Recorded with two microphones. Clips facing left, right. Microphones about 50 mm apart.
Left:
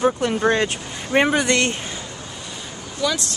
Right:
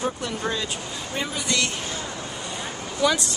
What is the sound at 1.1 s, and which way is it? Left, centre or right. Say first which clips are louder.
Speech: left 13 dB; left.